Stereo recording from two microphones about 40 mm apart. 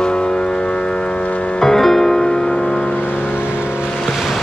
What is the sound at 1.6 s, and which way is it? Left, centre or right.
Music, centre.